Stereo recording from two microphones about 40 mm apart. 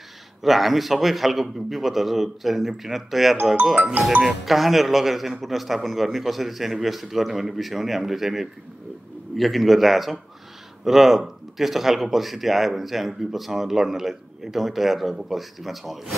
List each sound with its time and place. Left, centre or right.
0.4 s speech: centre